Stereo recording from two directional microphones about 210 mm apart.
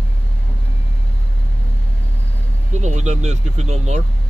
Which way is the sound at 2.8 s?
35° right (ahead or behind).